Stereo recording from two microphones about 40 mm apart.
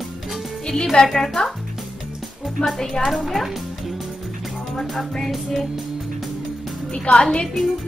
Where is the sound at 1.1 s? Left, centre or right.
Centre.